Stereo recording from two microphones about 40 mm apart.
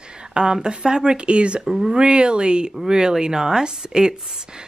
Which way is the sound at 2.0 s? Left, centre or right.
Right.